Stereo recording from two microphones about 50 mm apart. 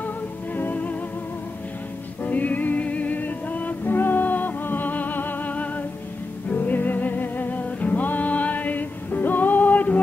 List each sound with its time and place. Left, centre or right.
0.6 s music: left
2.2 s music: left